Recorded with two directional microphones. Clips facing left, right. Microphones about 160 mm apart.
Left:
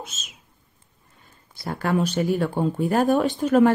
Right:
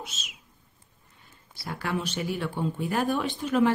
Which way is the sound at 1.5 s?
50° left (ahead or behind).